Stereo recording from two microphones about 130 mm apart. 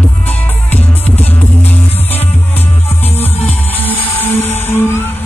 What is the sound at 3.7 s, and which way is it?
Music, 15° left (ahead or behind).